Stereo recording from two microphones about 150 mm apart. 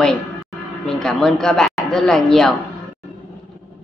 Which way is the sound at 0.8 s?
5° left (ahead or behind).